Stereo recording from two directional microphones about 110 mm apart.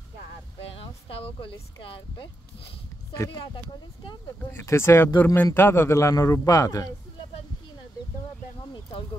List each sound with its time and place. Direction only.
0.7 s speech: 55° left (ahead or behind)
3.2 s a man's voice: 30° left (ahead or behind)
4.5 s a man's voice: 25° left (ahead or behind)